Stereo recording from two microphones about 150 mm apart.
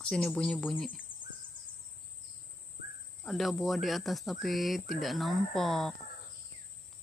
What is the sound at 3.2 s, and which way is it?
Speech, centre (ahead or behind).